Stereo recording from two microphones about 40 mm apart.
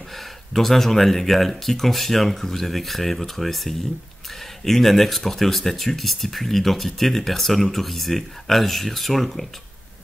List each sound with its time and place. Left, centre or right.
0.1 s speech: centre